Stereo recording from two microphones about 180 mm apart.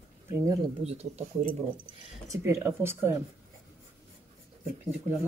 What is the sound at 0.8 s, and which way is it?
Speech, 35° right (ahead or behind).